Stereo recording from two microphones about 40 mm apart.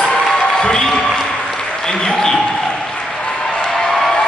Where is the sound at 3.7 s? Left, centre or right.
Centre.